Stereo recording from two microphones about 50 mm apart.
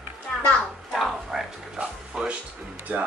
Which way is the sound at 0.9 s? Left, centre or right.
Centre.